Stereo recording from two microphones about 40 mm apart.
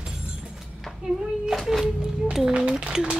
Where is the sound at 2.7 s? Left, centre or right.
Right.